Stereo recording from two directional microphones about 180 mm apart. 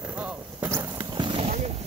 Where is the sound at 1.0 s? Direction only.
25° right (ahead or behind).